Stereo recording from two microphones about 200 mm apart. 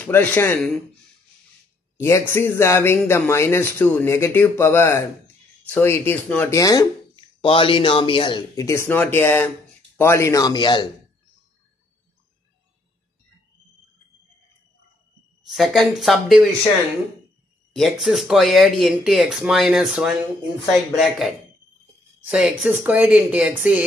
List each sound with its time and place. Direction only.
0.0 s speech: 10° left (ahead or behind)
2.0 s speech: 10° left (ahead or behind)
15.4 s speech: centre (ahead or behind)
17.7 s a woman's voice: centre (ahead or behind)